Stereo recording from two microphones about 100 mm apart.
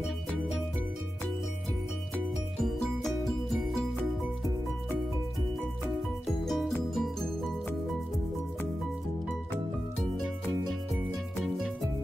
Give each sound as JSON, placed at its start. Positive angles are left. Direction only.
{"t": 6.4, "sound": "music", "side_deg": 0}
{"t": 11.4, "sound": "music", "side_deg": -5}